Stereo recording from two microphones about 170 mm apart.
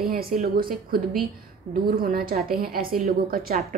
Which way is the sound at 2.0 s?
60° right (ahead or behind).